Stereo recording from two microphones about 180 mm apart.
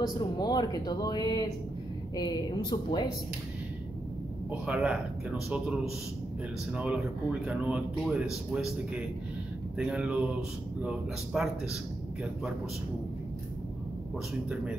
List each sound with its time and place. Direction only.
0.0 s speech: 25° left (ahead or behind)
4.5 s a man's voice: 5° right (ahead or behind)
9.8 s a man's voice: 5° right (ahead or behind)